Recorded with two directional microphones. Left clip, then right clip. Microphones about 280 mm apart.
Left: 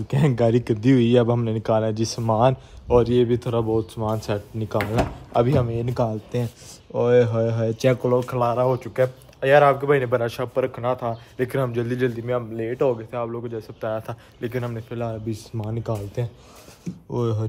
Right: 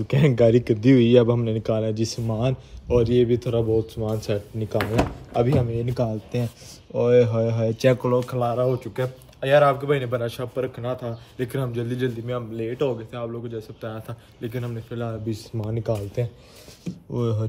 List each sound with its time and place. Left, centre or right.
0.1 s speech: centre
8.4 s speech: left
8.7 s speech: centre